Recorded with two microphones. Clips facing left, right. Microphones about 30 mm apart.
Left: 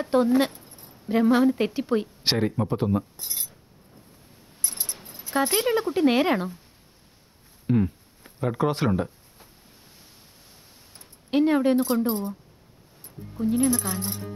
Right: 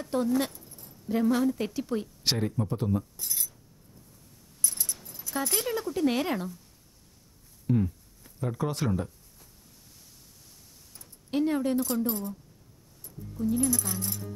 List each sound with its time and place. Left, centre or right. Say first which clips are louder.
0.0 s a woman's voice: left 7 dB; left
4.6 s speech: left 1 dB; left
7.6 s a sound: left 4 dB; left
11.0 s speech: left 6 dB; left